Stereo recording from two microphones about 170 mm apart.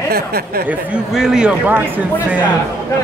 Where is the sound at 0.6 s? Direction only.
5° right (ahead or behind).